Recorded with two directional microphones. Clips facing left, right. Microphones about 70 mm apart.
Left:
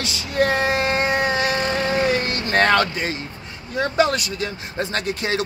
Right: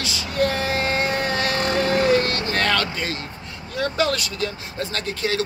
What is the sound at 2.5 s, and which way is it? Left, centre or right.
Speech, left.